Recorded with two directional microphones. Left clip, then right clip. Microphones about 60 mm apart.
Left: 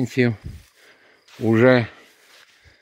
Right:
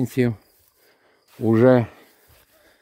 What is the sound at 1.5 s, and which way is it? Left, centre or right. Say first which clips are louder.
Speech: even; right.